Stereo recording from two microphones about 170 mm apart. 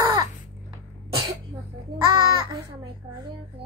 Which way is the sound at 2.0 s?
20° right (ahead or behind).